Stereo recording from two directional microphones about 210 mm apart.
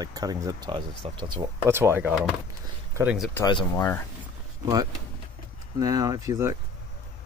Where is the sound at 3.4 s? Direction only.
15° left (ahead or behind).